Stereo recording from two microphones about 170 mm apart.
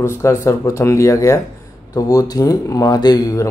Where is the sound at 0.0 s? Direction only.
15° left (ahead or behind).